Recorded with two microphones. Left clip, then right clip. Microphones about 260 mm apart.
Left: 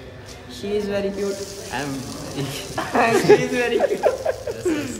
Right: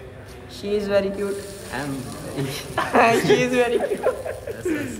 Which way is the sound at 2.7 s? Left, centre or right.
Right.